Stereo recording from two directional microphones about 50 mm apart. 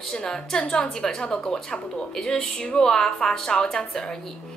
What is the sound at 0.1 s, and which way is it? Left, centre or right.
A woman's voice, centre.